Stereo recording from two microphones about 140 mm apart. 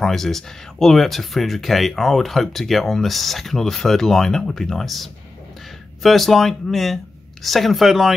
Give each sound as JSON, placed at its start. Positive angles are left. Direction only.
{"t": 0.0, "sound": "speech", "side_deg": 0}